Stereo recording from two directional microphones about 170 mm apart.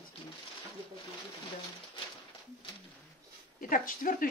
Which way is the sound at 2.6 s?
30° left (ahead or behind).